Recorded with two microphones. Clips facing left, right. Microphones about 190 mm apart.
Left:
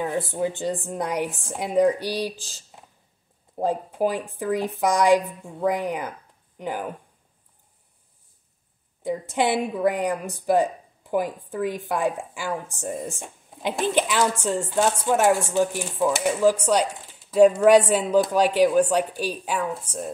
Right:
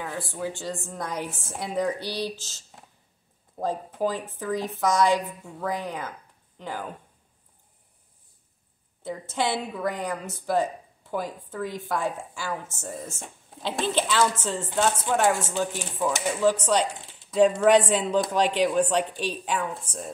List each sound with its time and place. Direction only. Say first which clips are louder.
0.2 s speech: left 6 dB; 20° left (ahead or behind)
9.0 s speech: left 5 dB; 15° left (ahead or behind)